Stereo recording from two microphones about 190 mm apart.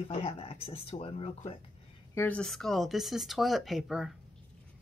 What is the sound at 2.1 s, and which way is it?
Speech, 5° left (ahead or behind).